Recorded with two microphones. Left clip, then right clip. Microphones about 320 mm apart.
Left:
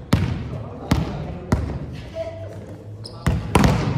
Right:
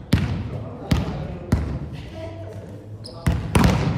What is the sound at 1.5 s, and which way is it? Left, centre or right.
Trickle, left.